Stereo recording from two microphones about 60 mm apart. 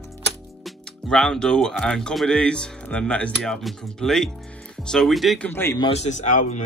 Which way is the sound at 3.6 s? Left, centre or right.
Centre.